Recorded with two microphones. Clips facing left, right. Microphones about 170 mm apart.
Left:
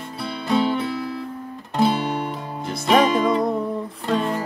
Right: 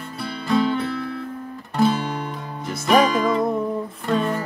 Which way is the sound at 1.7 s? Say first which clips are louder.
Even; 25° left (ahead or behind).